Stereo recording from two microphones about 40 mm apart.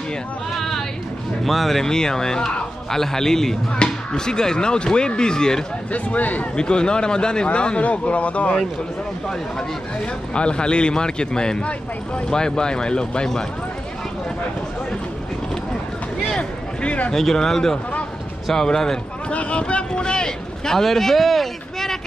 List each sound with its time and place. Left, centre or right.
0.6 s a sound: centre
1.4 s speech: centre
1.9 s speech: centre
3.7 s speech: left
5.9 s a man's voice: left
6.5 s a man's voice: left
10.3 s speech: left
16.3 s a sound: left
17.1 s speech: centre
19.3 s speech: left; by 21.9 s centre